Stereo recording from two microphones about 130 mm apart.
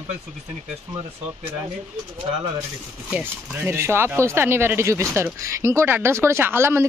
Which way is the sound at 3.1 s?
15° right (ahead or behind).